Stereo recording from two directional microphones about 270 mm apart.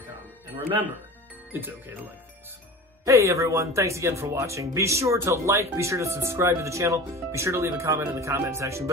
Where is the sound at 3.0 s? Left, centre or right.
Centre.